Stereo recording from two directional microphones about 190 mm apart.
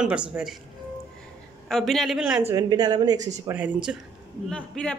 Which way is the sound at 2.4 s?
15° right (ahead or behind).